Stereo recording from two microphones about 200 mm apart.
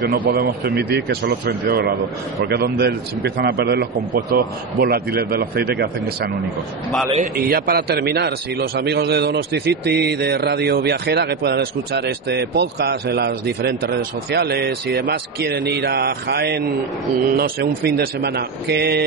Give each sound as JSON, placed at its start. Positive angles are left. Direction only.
{"t": 0.1, "sound": "a man's voice", "side_deg": -50}